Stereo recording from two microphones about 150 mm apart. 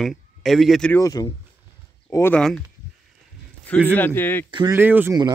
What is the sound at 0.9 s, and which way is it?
Speech, 20° left (ahead or behind).